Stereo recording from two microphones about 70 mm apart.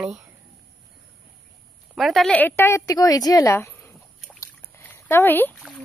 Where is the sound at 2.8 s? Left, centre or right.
Left.